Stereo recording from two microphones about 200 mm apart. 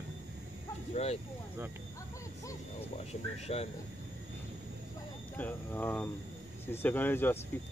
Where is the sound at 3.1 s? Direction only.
30° left (ahead or behind).